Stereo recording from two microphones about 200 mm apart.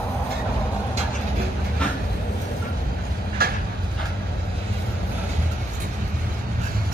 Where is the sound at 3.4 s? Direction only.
50° right (ahead or behind).